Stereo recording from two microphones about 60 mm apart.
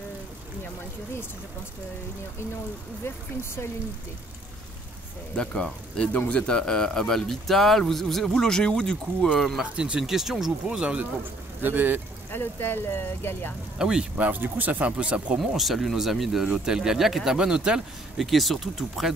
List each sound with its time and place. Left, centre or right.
5.3 s speech: centre
9.4 s speech: centre
10.8 s speech: centre
11.6 s speech: right
12.3 s speech: left
13.7 s speech: centre
14.1 s speech: right
15.3 s speech: centre
18.2 s speech: centre